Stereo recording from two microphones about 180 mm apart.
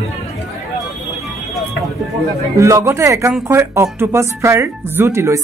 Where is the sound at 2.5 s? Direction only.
15° right (ahead or behind).